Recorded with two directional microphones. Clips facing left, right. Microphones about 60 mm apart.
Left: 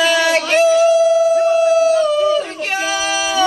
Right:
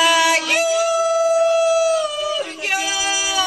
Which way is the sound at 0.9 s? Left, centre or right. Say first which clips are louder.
Left 6 dB; right.